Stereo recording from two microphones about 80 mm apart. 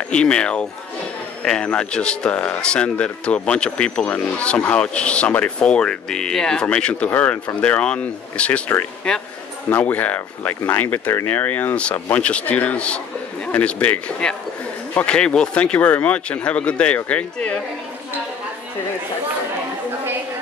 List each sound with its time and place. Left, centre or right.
0.1 s speech: centre
9.7 s speech: left